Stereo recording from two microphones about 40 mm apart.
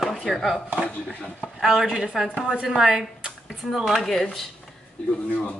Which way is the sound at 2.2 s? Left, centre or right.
Left.